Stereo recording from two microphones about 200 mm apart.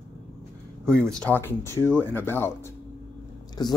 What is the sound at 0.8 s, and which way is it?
Speech, 5° left (ahead or behind).